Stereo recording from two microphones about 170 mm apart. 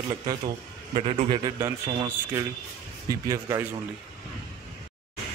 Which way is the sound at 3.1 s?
20° right (ahead or behind).